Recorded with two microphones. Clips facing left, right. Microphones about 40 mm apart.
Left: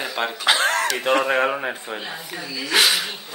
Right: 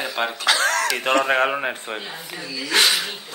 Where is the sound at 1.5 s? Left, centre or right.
Right.